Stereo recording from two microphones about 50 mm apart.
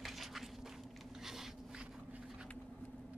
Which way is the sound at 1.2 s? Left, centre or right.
Centre.